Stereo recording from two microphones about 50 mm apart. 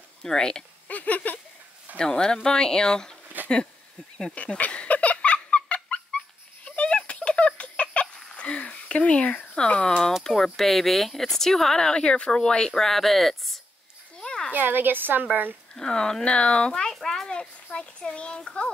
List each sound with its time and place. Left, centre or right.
0.2 s speech: centre
0.8 s speech: left
2.0 s speech: centre
3.4 s a sound: right
4.2 s speech: centre
4.6 s dog: left
6.8 s a sound: left
8.4 s speech: left; by 13.6 s centre
14.1 s a sound: centre
14.5 s a woman's voice: right
15.7 s speech: centre
16.9 s a sound: centre
17.7 s a child's voice: left